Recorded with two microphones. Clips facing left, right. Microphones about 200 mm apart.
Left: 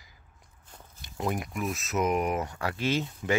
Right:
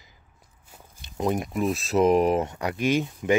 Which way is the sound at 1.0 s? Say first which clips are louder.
Right 5 dB; 20° right (ahead or behind).